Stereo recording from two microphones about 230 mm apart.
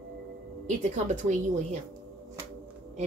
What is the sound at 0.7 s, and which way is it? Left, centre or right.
A woman's voice, right.